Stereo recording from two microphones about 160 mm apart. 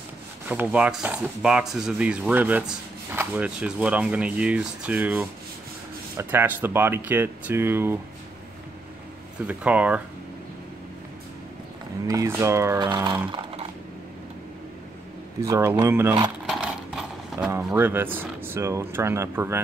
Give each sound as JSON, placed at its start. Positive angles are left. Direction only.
{"t": 0.5, "sound": "speech", "side_deg": -10}
{"t": 9.5, "sound": "speech", "side_deg": -10}
{"t": 12.1, "sound": "speech", "side_deg": -20}
{"t": 15.4, "sound": "speech", "side_deg": -20}
{"t": 16.4, "sound": "a sound", "side_deg": -5}
{"t": 17.7, "sound": "speech", "side_deg": -15}